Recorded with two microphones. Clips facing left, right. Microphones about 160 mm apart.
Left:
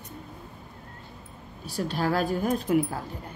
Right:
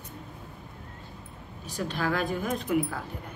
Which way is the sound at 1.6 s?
35° left (ahead or behind).